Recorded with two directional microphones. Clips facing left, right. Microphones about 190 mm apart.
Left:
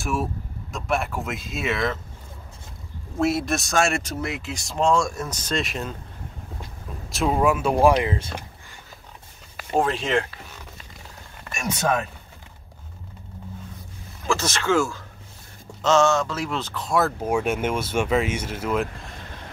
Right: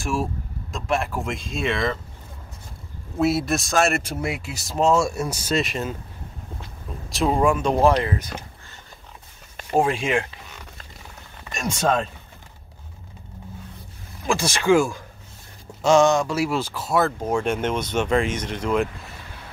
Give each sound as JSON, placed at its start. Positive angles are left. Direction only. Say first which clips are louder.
{"t": 0.0, "sound": "speech", "louder": "right 1 dB", "side_deg": 0}
{"t": 3.2, "sound": "speech", "louder": "right 1 dB", "side_deg": 0}
{"t": 7.1, "sound": "speech", "louder": "right 1 dB", "side_deg": 0}
{"t": 8.1, "sound": "speech", "louder": "even", "side_deg": 25}
{"t": 9.8, "sound": "speech", "louder": "right 1 dB", "side_deg": -10}
{"t": 14.2, "sound": "speech", "louder": "right 3 dB", "side_deg": -10}
{"t": 17.2, "sound": "speech", "louder": "even", "side_deg": 10}